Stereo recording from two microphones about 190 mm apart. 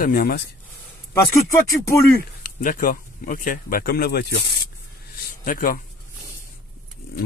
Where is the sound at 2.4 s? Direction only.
45° left (ahead or behind).